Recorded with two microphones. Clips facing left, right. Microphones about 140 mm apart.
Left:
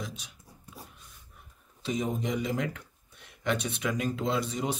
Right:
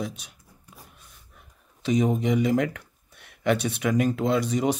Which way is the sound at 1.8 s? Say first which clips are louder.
Right 8 dB; 75° right (ahead or behind).